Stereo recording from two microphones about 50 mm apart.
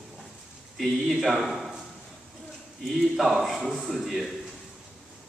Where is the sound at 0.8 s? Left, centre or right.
Centre.